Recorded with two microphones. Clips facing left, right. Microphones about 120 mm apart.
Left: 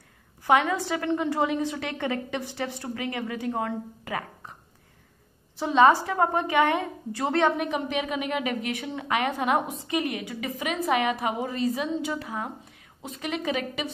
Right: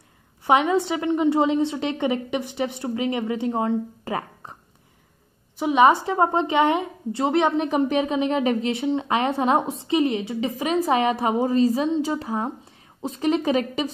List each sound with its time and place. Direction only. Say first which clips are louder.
0.4 s a woman's voice: right 3 dB; 20° right (ahead or behind)
4.0 s a sound: right 4 dB; 35° right (ahead or behind)
5.6 s a woman's voice: right 2 dB; 15° right (ahead or behind)
7.6 s a woman's voice: right 7 dB; 35° right (ahead or behind)